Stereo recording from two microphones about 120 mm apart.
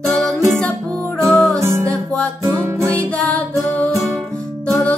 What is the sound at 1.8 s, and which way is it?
Music, 10° left (ahead or behind).